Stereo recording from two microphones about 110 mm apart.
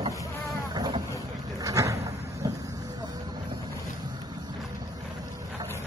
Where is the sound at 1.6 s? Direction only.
30° right (ahead or behind).